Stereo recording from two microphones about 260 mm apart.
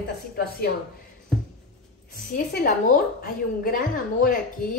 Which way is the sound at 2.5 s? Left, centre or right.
Left.